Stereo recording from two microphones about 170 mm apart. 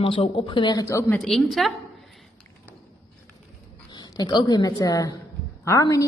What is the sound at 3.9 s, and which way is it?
A woman's voice, 25° left (ahead or behind).